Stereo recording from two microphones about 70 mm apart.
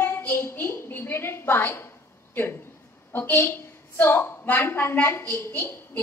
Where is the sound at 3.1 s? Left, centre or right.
Left.